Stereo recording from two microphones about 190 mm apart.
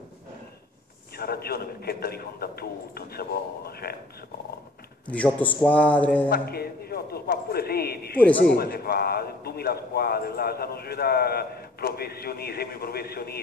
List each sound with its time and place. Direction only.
1.1 s a man's voice: 55° left (ahead or behind)
5.0 s a man's voice: 10° left (ahead or behind)
6.2 s a man's voice: 55° left (ahead or behind)